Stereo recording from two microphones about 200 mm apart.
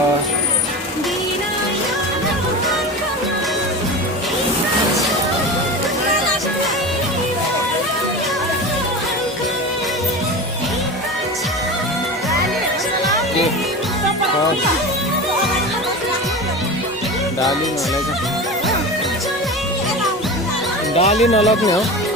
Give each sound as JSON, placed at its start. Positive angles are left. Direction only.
{"t": 20.9, "sound": "speech", "side_deg": 35}